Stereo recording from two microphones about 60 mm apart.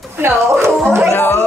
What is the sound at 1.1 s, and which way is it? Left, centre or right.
Speech, left.